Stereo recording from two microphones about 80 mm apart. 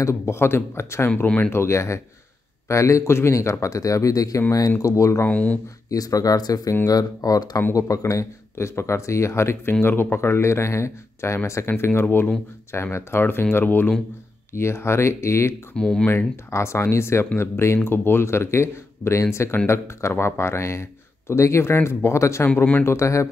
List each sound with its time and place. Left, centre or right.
0.0 s speech: left
1.1 s speech: centre
1.5 s speech: left
5.3 s speech: centre
5.9 s speech: left
15.7 s speech: centre
16.1 s speech: left